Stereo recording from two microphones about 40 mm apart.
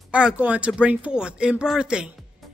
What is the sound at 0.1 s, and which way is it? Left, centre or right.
Speech, right.